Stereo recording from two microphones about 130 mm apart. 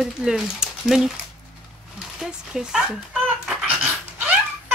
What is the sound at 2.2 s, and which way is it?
Speech, 5° right (ahead or behind).